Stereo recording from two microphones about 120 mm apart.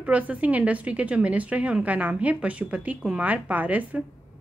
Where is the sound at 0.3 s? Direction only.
10° right (ahead or behind).